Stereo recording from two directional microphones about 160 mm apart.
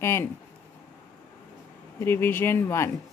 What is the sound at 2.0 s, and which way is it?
Speech, 15° left (ahead or behind).